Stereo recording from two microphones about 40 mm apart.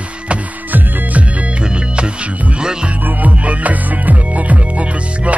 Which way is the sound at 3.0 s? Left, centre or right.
Right.